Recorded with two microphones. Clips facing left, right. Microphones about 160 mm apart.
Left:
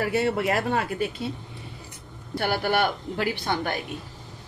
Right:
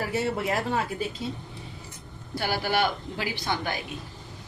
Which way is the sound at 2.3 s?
55° left (ahead or behind).